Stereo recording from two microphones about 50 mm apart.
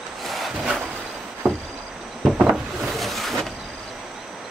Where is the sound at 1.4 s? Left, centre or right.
Right.